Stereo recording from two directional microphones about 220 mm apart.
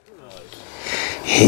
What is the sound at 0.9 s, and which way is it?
Sniff, 15° left (ahead or behind).